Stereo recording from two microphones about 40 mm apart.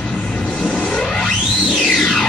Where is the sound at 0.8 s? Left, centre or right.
Centre.